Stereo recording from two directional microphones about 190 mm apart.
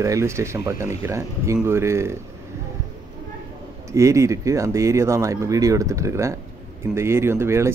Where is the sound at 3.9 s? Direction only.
15° right (ahead or behind).